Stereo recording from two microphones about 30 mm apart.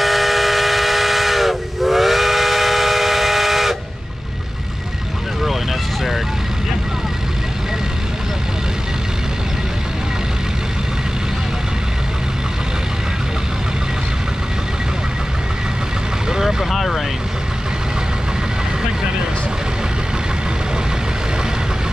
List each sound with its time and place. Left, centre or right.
0.0 s steam whistle: centre
16.3 s vehicle: centre
16.7 s vehicle: centre